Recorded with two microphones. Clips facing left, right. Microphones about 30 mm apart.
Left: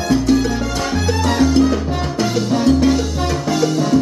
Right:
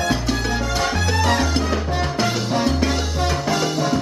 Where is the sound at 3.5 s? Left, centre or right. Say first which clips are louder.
Left 7 dB; centre.